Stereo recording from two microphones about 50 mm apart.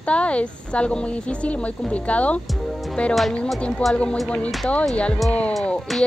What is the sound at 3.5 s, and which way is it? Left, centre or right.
A woman's voice, left.